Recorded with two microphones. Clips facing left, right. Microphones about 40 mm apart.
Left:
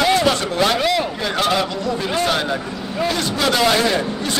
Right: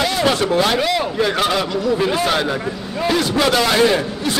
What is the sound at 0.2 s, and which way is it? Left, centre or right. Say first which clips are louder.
Speech: right 2 dB; centre.